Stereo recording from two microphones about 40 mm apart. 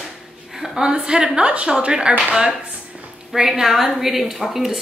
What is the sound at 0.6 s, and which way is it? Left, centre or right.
A woman's voice, centre.